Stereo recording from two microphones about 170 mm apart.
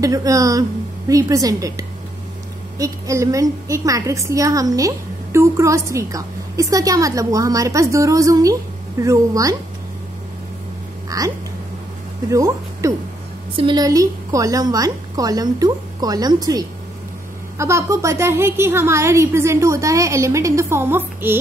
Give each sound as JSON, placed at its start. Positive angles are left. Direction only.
{"t": 0.0, "sound": "a woman's voice", "side_deg": -20}
{"t": 11.1, "sound": "a sound", "side_deg": -20}
{"t": 12.3, "sound": "a woman's voice", "side_deg": -20}